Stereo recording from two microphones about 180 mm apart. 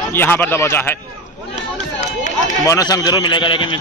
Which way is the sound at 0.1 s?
10° left (ahead or behind).